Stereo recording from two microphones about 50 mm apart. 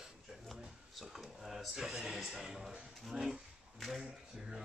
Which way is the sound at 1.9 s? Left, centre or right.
Centre.